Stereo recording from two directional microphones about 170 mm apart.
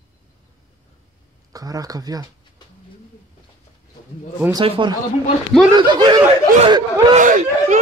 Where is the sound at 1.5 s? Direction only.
20° right (ahead or behind).